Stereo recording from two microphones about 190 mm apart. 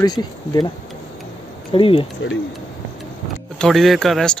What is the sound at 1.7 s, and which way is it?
Speech, 30° left (ahead or behind).